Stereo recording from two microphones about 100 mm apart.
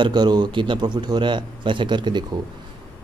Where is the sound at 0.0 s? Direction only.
45° right (ahead or behind).